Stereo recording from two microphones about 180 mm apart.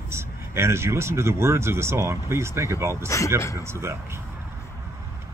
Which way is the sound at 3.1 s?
15° left (ahead or behind).